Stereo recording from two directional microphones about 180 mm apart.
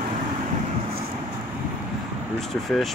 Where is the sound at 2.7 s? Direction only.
5° left (ahead or behind).